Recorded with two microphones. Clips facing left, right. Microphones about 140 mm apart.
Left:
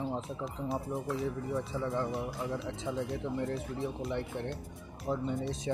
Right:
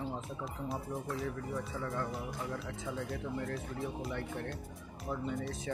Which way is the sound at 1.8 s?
25° left (ahead or behind).